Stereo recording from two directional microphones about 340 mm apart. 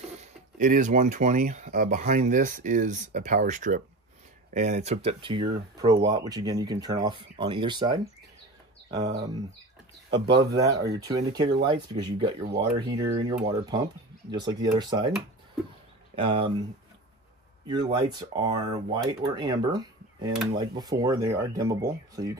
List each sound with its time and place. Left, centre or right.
0.2 s speech: right
16.2 s speech: centre
17.6 s speech: centre